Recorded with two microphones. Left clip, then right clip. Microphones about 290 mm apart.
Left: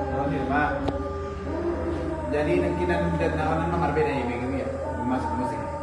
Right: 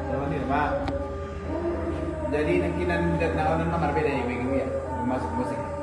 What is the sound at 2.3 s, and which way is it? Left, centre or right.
A man's voice, centre.